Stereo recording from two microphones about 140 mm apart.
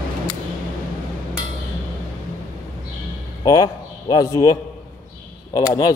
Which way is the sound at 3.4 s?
25° left (ahead or behind).